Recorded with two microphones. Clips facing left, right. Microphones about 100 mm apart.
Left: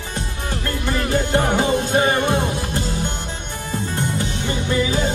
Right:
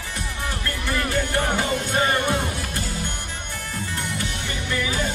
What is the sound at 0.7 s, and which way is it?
Music, 20° left (ahead or behind).